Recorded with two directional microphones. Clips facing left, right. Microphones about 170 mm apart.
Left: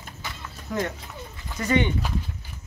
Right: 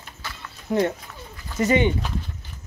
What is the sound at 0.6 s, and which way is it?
Speech, 30° right (ahead or behind).